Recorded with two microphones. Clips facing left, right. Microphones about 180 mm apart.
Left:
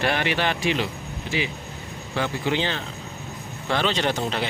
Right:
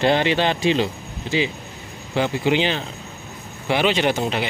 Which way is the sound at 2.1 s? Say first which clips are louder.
Right 5 dB; 20° right (ahead or behind).